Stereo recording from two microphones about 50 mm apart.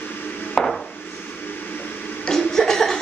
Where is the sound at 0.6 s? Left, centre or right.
Centre.